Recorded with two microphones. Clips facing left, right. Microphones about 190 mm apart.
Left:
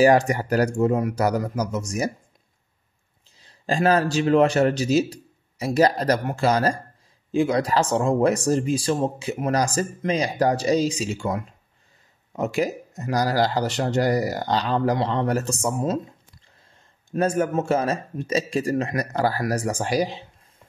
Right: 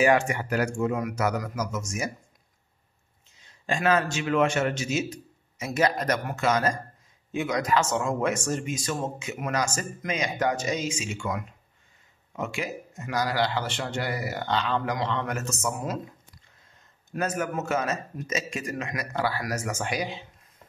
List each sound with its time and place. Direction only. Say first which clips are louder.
0.0 s speech: left 5 dB; 35° left (ahead or behind)
3.3 s speech: left 6 dB; 35° left (ahead or behind)
17.1 s speech: left 7 dB; 30° left (ahead or behind)